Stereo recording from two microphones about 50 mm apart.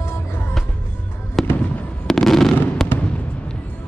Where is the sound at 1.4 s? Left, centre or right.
Centre.